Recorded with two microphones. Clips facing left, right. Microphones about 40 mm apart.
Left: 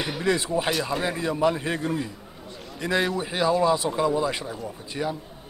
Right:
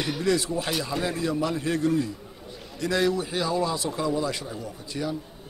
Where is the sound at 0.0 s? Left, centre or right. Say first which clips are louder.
Even; centre.